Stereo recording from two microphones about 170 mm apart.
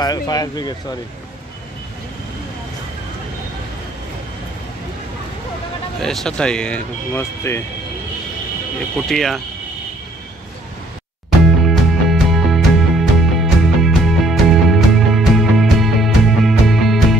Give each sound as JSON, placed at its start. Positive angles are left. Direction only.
{"t": 0.0, "sound": "speech", "side_deg": 25}
{"t": 5.9, "sound": "speech", "side_deg": 5}
{"t": 8.9, "sound": "speech", "side_deg": 0}
{"t": 11.4, "sound": "music", "side_deg": 0}